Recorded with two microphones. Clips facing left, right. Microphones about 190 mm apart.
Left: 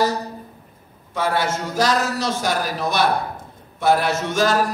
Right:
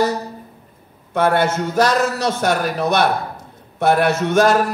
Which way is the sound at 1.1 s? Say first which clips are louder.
Right 5 dB; 60° right (ahead or behind).